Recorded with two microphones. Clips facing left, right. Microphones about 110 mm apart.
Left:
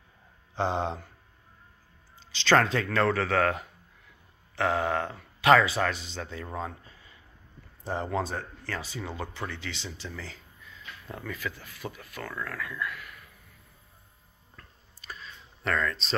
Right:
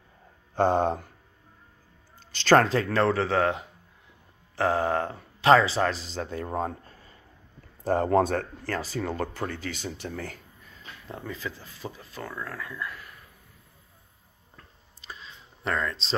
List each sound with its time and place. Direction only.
0.6 s speech: 50° right (ahead or behind)
2.1 s speech: 45° right (ahead or behind)
8.7 s speech: 40° right (ahead or behind)
11.1 s speech: 25° right (ahead or behind)
14.6 s a sound: 25° right (ahead or behind)